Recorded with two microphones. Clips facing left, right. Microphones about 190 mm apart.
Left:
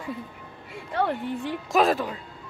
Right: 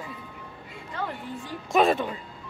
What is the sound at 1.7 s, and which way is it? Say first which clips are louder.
Speech: right 1 dB; centre (ahead or behind).